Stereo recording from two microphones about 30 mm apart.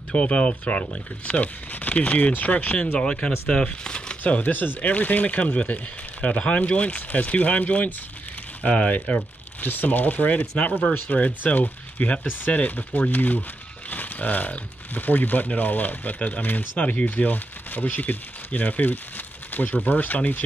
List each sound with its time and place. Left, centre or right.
0.1 s speech: left
1.7 s speech: left
3.0 s speech: left
3.8 s a sound: left
4.2 s speech: left
7.0 s speech: left
10.9 s speech: left
16.2 s speech: left
16.4 s speech: left